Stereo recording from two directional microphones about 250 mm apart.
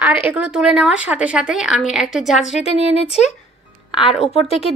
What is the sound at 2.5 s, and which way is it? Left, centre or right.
Speech, left.